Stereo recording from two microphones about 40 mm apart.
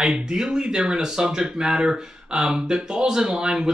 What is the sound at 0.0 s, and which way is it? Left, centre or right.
Speech, centre.